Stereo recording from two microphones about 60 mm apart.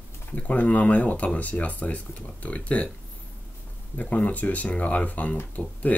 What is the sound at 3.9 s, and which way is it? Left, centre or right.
Speech, left.